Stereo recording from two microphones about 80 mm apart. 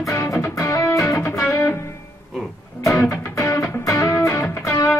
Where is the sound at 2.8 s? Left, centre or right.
Left.